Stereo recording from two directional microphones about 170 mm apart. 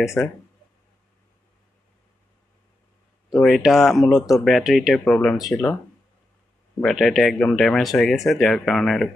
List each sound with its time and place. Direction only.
0.0 s speech: centre (ahead or behind)
3.3 s speech: centre (ahead or behind)
6.8 s speech: centre (ahead or behind)